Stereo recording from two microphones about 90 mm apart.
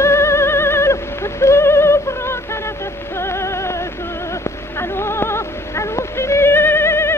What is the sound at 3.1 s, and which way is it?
Music, 30° left (ahead or behind).